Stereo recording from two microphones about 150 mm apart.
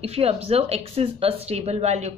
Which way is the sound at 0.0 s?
45° right (ahead or behind).